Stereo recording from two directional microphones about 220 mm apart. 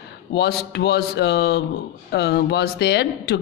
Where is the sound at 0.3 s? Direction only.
50° left (ahead or behind).